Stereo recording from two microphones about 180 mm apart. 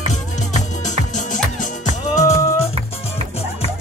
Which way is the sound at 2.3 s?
15° left (ahead or behind).